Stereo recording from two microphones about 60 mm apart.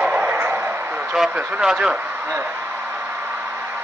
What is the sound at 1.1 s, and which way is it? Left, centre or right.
Speech, centre.